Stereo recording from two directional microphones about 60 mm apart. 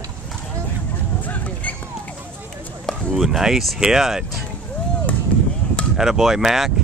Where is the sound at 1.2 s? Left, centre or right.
Left.